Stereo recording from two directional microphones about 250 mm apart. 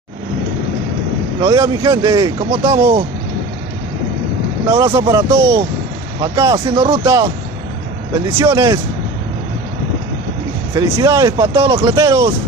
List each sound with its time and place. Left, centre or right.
1.4 s speech: centre
4.6 s speech: centre
8.4 s speech: centre
10.7 s speech: centre